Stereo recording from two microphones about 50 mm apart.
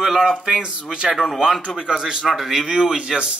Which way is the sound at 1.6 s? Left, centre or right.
Centre.